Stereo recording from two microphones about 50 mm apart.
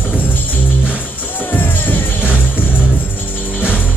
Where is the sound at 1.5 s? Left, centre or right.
Left.